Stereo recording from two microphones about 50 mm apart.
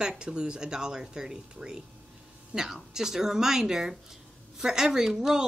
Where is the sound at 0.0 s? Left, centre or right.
Centre.